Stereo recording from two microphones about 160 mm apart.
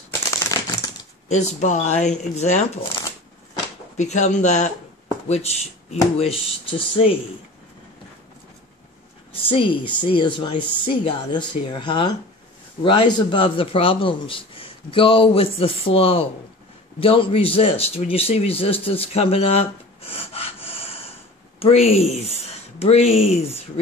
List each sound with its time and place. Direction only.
0.3 s crumpling: 20° left (ahead or behind)
1.3 s speech: 45° left (ahead or behind)
3.9 s speech: 45° left (ahead or behind)
5.0 s a sound: 40° left (ahead or behind)
6.1 s a man's voice: 35° left (ahead or behind)
9.3 s a sound: 35° left (ahead or behind)
10.0 s a man's voice: 30° left (ahead or behind)